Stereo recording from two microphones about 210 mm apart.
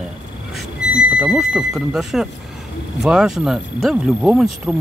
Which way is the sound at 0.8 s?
50° left (ahead or behind).